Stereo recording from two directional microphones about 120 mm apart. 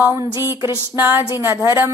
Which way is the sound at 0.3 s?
25° right (ahead or behind).